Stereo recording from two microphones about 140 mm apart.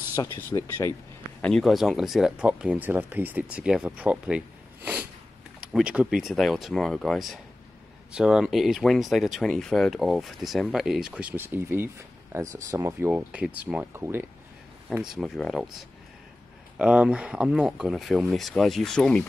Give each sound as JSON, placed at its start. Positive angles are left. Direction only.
{"t": 0.1, "sound": "speech", "side_deg": 20}
{"t": 1.4, "sound": "speech", "side_deg": 5}
{"t": 5.6, "sound": "speech", "side_deg": -5}
{"t": 14.9, "sound": "speech", "side_deg": 0}
{"t": 16.7, "sound": "speech", "side_deg": -5}